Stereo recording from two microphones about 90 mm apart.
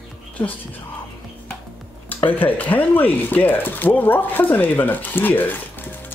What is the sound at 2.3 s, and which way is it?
Speech, 20° left (ahead or behind).